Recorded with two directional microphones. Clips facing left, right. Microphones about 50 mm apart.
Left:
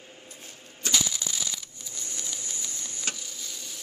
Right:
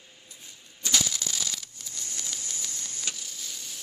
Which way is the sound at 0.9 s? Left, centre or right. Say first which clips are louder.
Right 1 dB; centre.